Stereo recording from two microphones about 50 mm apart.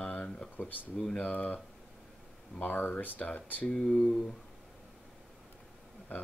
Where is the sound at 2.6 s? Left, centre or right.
Left.